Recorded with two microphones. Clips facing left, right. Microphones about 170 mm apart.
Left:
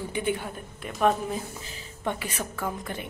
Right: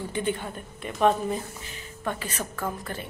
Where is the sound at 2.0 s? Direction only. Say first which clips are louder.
Left 1 dB; 10° left (ahead or behind).